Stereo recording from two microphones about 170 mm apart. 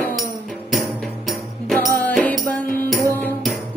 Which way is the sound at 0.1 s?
Centre (ahead or behind).